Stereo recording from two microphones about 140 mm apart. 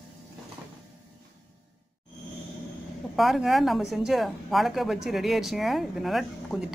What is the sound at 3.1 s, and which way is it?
Speech, centre (ahead or behind).